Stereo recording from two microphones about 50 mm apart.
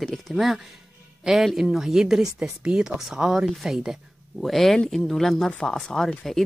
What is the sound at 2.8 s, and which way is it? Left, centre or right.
Speech, centre.